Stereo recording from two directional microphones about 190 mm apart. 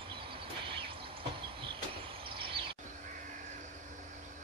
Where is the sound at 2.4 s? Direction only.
25° right (ahead or behind).